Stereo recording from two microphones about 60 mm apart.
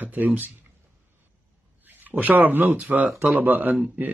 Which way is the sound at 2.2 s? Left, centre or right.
Right.